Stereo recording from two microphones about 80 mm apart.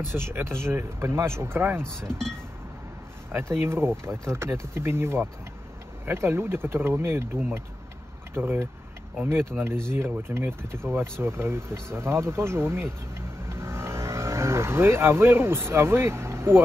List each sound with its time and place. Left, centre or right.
0.0 s speech: right
2.0 s speech: centre
3.3 s speech: right
8.4 s speech: right
9.7 s speech: right